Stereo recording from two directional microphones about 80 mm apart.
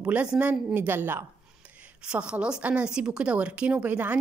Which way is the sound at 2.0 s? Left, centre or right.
Centre.